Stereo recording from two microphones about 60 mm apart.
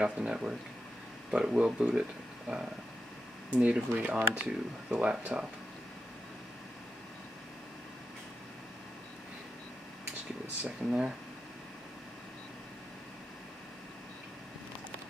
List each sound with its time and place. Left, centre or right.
0.0 s speech: centre
10.6 s speech: centre